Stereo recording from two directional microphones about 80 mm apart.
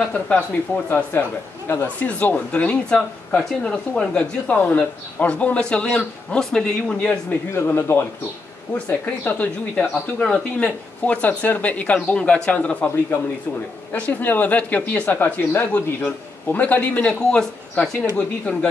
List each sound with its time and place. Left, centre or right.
0.8 s a man's voice: left
7.5 s a man's voice: left